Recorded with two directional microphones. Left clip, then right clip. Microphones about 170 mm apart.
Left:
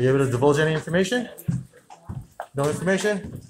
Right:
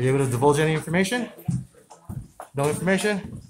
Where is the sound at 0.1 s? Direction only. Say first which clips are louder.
Left 1 dB; 15° right (ahead or behind).